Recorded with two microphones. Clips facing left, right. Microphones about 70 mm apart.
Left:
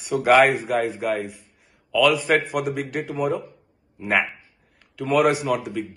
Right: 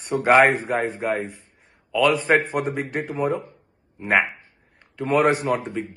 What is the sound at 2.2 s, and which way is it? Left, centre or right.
Speech, right.